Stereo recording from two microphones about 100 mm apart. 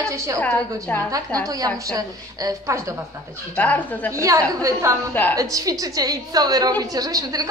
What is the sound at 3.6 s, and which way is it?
Speech, 15° left (ahead or behind).